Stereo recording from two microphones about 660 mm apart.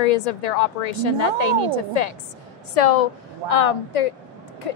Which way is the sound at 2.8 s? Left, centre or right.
Left.